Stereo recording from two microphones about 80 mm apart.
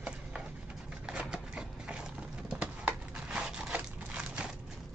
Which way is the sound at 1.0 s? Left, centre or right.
Centre.